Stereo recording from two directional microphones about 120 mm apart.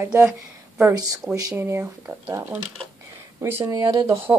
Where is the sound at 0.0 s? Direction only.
20° right (ahead or behind).